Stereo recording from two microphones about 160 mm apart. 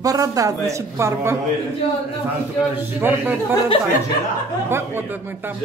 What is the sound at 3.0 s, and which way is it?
Speech, 15° right (ahead or behind).